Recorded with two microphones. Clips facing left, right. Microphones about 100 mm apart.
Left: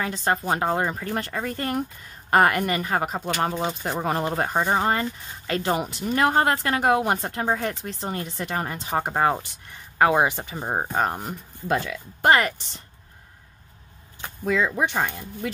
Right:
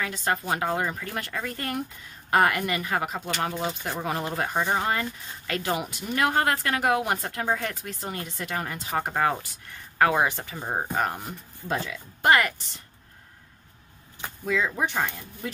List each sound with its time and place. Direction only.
0.0 s a woman's voice: 35° left (ahead or behind)
11.2 s speech: 60° left (ahead or behind)
12.2 s speech: 30° left (ahead or behind)
14.4 s speech: 50° left (ahead or behind)
14.8 s speech: 85° left